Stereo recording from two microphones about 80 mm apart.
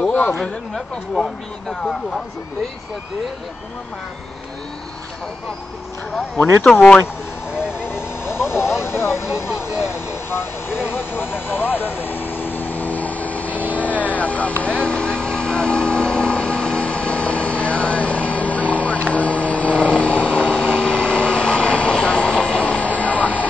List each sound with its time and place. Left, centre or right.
0.1 s speech: centre
0.4 s speech: centre
6.6 s speech: centre
7.9 s vehicle: left
8.5 s speech: centre
9.0 s speech: left
9.3 s speech: centre
10.3 s vehicle: left